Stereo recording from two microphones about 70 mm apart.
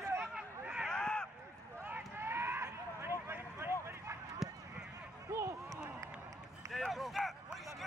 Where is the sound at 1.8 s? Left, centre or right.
Right.